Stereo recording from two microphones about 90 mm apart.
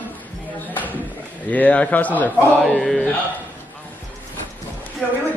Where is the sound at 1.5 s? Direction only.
15° left (ahead or behind).